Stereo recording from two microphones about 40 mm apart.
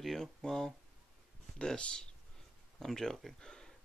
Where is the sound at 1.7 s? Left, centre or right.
Left.